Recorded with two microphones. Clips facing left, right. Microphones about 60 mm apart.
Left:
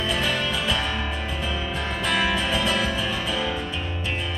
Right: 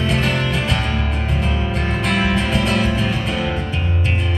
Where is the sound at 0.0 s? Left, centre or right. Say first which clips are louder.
Right 5 dB; right.